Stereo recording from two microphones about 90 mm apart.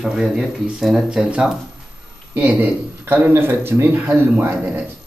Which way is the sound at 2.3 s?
25° right (ahead or behind).